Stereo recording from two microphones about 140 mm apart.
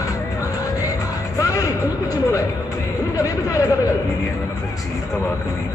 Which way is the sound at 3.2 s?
25° left (ahead or behind).